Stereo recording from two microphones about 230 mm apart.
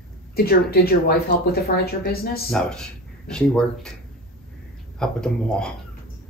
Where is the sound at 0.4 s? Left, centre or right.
Left.